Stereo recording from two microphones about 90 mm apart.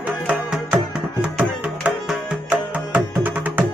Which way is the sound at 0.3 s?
10° right (ahead or behind).